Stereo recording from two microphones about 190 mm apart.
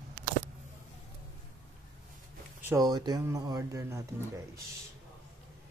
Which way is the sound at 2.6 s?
20° right (ahead or behind).